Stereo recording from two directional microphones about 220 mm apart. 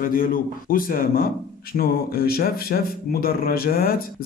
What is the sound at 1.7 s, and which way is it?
Speech, 45° left (ahead or behind).